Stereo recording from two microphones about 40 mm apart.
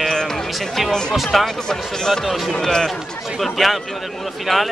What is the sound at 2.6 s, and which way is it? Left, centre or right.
Speech, centre.